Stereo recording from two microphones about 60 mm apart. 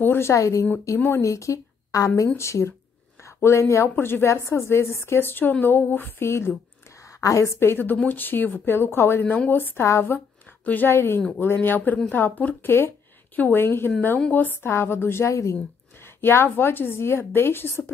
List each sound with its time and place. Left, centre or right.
0.0 s a woman's voice: left
0.3 s speech: left
0.9 s a woman's voice: left
1.2 s a woman's voice: left
6.2 s a woman's voice: left
7.2 s a woman's voice: left
7.5 s a woman's voice: left
10.9 s a woman's voice: left
16.2 s a woman's voice: left